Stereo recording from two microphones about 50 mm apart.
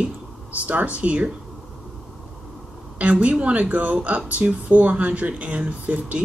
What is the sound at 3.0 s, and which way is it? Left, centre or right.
Speech, right.